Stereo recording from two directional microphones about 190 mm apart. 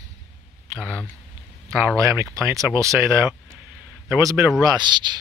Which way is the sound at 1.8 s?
15° right (ahead or behind).